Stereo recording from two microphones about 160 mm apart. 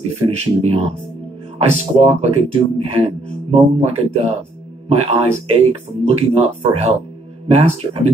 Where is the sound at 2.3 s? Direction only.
40° right (ahead or behind).